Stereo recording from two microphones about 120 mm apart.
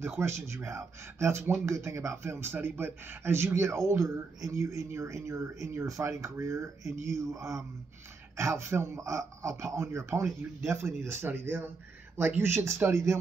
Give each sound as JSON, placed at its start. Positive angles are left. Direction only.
{"t": 0.0, "sound": "speech", "side_deg": -20}